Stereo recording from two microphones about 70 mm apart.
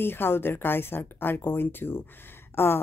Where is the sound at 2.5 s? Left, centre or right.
Left.